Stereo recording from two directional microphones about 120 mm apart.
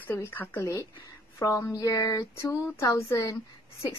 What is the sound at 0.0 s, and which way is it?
A woman's voice, 20° left (ahead or behind).